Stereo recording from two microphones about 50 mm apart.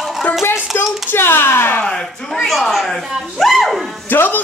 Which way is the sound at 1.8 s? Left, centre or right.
Centre.